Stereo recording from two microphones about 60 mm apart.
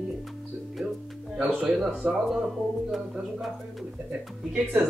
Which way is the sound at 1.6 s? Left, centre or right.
Centre.